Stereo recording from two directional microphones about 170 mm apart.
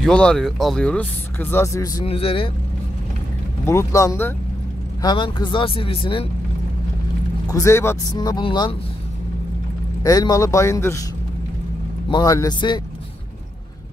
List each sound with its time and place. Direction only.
0.0 s speech: 5° left (ahead or behind)
2.0 s speech: 35° left (ahead or behind)
3.6 s speech: 15° left (ahead or behind)
7.4 s speech: 15° left (ahead or behind)
10.0 s speech: 20° left (ahead or behind)
12.1 s speech: 20° left (ahead or behind)